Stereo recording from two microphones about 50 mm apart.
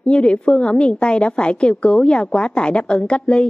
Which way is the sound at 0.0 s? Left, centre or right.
Left.